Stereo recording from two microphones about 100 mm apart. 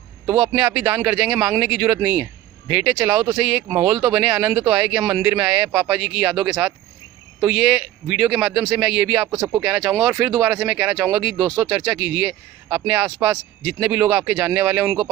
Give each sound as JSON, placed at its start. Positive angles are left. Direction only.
{"t": 0.4, "sound": "a man's voice", "side_deg": -10}